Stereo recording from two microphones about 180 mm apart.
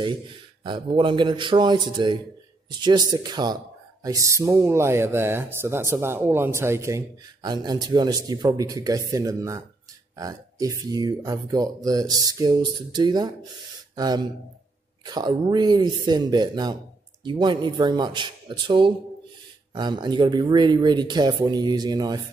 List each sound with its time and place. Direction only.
0.7 s speech: 30° right (ahead or behind)